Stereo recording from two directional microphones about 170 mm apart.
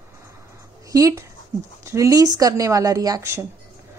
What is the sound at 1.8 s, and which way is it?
Speech, 20° right (ahead or behind).